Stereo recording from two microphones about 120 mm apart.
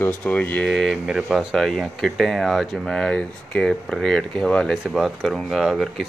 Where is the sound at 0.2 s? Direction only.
15° left (ahead or behind).